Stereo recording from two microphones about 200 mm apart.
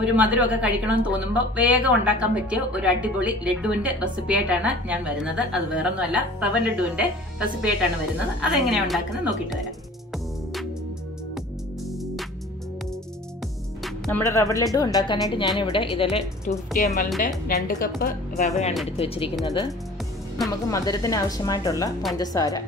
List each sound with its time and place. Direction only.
0.0 s a woman's voice: 5° right (ahead or behind)
10.1 s music: centre (ahead or behind)
13.8 s music: centre (ahead or behind)
14.2 s speech: 15° left (ahead or behind)
16.7 s a woman's voice: 40° left (ahead or behind); by 22.6 s 20° left (ahead or behind)